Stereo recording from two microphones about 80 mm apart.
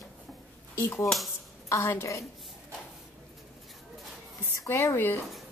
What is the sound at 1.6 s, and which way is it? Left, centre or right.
Speech, left.